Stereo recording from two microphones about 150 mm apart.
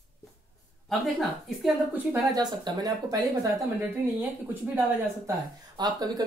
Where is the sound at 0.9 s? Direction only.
Centre (ahead or behind).